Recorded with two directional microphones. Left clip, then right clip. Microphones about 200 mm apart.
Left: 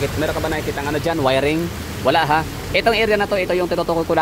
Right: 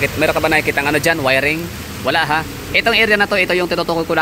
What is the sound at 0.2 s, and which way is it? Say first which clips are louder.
Speech: right 10 dB; 15° right (ahead or behind).